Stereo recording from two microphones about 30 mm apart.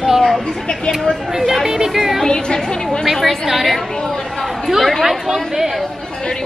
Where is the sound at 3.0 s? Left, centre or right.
Centre.